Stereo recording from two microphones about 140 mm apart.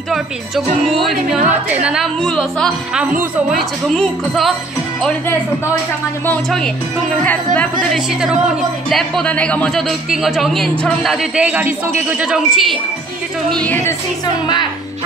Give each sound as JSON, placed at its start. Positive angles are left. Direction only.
{"t": 0.1, "sound": "speech", "side_deg": 0}
{"t": 7.9, "sound": "speech", "side_deg": -5}
{"t": 13.5, "sound": "speech", "side_deg": 10}